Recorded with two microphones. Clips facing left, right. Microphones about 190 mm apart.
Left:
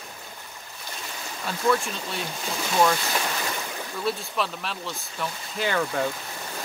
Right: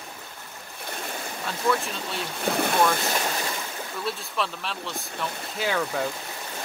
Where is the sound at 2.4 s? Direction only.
60° right (ahead or behind).